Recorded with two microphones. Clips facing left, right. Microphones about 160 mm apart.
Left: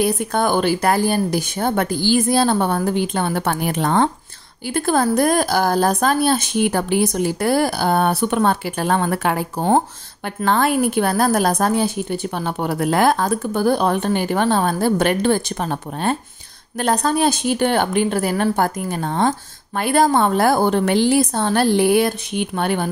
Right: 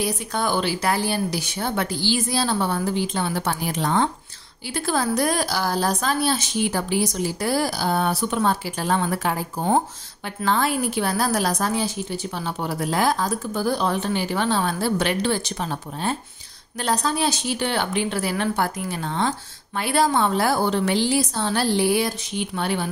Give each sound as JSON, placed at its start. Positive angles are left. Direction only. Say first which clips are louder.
{"t": 0.0, "sound": "a woman's voice", "louder": "left 6 dB", "side_deg": 55}
{"t": 10.2, "sound": "a woman's voice", "louder": "left 4 dB", "side_deg": 55}